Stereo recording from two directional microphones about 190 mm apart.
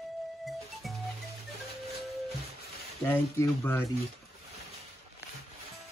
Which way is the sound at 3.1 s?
10° left (ahead or behind).